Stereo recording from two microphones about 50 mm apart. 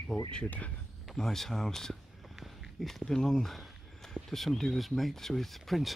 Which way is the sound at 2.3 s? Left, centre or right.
Centre.